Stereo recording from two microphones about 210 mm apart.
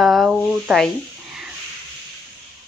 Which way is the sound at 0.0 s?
Centre (ahead or behind).